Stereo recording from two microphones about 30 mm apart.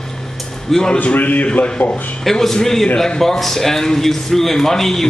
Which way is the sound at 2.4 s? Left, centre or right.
Centre.